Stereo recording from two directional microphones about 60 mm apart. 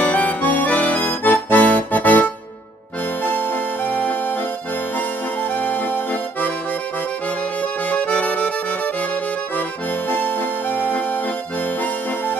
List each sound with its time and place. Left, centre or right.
0.0 s accordion: left
3.3 s music: left
7.9 s music: left
10.0 s music: left